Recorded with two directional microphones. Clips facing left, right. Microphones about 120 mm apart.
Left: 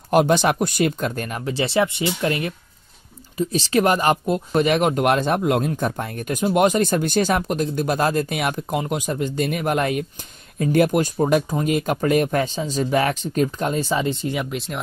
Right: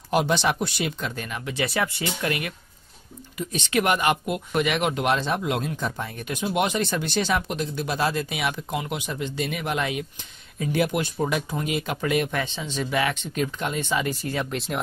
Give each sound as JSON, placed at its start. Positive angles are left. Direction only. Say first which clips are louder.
{"t": 0.1, "sound": "speech", "louder": "left 6 dB", "side_deg": 50}
{"t": 14.4, "sound": "speech", "louder": "left 1 dB", "side_deg": 0}